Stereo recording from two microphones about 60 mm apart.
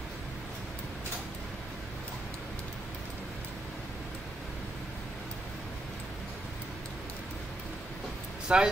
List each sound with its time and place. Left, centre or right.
8.5 s speech: right